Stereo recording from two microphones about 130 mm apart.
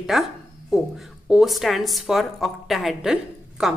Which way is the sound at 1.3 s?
Centre (ahead or behind).